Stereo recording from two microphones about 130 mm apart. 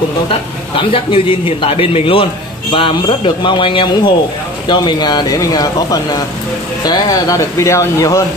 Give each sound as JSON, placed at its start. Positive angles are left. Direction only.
{"t": 0.7, "sound": "a man's voice", "side_deg": 45}